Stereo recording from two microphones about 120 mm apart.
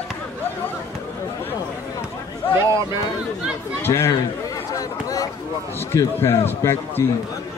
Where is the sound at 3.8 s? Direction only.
20° left (ahead or behind).